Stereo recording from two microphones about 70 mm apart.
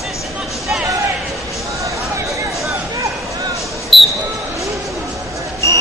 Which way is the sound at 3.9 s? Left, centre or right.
Centre.